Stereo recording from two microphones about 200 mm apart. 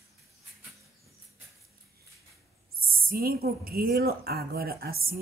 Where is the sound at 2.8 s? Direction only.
45° right (ahead or behind).